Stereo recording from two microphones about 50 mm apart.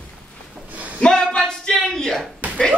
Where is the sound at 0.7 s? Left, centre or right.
Right.